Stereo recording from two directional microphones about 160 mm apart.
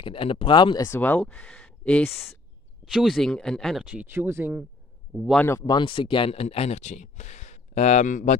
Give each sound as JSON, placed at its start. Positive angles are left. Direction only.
{"t": 0.0, "sound": "speech", "side_deg": 35}
{"t": 0.8, "sound": "speech", "side_deg": 15}
{"t": 5.3, "sound": "speech", "side_deg": 10}
{"t": 5.6, "sound": "speech", "side_deg": 25}